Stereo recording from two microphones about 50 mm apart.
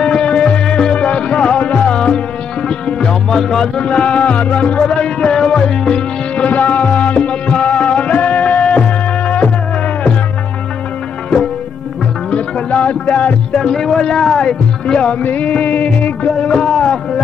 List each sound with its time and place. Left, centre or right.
0.0 s music: centre
3.8 s music: left
12.3 s music: left
13.6 s speech: centre
15.2 s music: left
16.3 s a sound: centre